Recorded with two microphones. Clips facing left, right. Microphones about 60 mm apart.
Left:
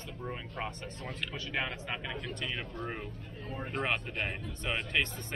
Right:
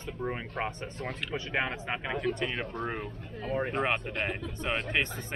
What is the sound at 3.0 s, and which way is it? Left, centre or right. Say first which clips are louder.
Speech: right 7 dB; right.